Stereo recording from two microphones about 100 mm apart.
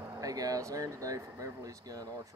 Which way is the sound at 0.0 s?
30° right (ahead or behind).